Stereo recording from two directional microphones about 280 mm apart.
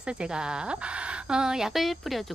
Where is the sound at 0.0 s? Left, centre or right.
Centre.